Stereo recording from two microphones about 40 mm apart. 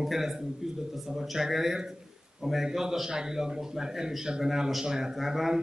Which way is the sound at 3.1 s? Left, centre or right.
Centre.